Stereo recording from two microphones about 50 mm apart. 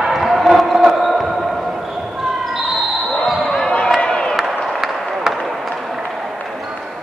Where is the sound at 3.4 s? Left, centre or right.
Centre.